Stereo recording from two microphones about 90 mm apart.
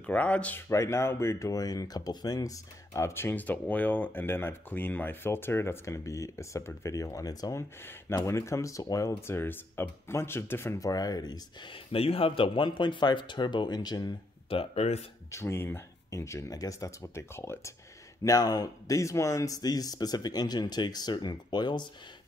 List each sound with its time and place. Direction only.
0.0 s speech: 15° left (ahead or behind)
0.6 s speech: 30° left (ahead or behind)
8.3 s speech: 30° left (ahead or behind)
10.8 s speech: 45° left (ahead or behind)
11.6 s speech: 85° left; by 14.1 s 50° left (ahead or behind)
14.5 s speech: 90° left
15.3 s speech: 30° left (ahead or behind)
18.2 s speech: 45° left (ahead or behind)